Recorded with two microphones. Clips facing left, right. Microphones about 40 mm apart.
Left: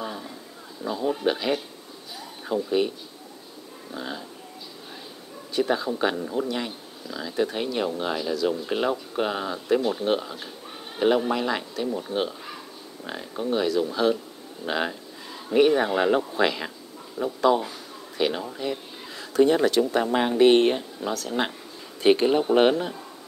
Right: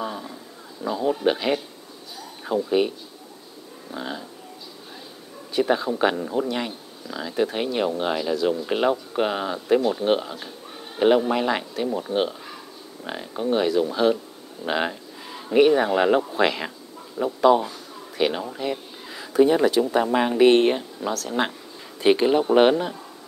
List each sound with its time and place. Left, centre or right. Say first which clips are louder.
0.0 s a sound: right 3 dB; centre
0.8 s speech: right 3 dB; centre
3.9 s speech: right 2 dB; centre
5.5 s speech: right 3 dB; centre
9.8 s speech: right 3 dB; centre
10.0 s speech: right 3 dB; centre